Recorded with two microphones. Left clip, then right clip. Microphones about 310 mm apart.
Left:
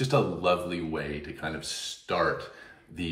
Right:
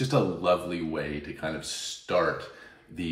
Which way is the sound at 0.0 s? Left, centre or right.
Centre.